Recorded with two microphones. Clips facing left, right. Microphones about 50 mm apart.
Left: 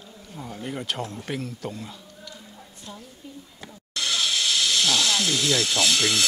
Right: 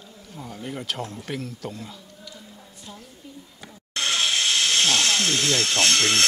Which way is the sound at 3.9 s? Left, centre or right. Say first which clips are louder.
Right 2 dB; right.